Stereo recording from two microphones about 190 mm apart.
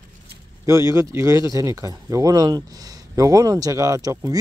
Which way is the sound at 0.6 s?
15° right (ahead or behind).